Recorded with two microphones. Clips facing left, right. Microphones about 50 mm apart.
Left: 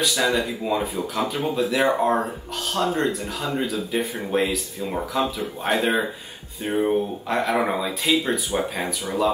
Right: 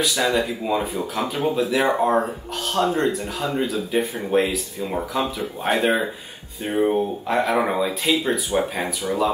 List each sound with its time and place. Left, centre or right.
0.0 s speech: centre